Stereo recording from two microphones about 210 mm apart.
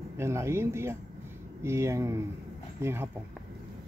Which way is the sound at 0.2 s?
10° right (ahead or behind).